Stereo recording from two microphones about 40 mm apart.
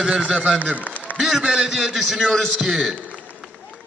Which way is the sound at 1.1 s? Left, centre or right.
Centre.